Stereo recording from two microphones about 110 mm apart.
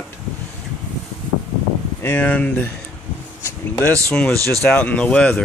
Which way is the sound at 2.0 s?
15° left (ahead or behind).